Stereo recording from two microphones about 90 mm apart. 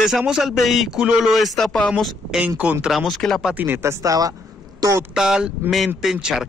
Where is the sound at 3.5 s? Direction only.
20° right (ahead or behind); by 4.3 s 40° right (ahead or behind).